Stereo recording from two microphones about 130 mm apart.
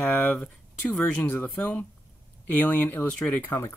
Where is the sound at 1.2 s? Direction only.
10° left (ahead or behind).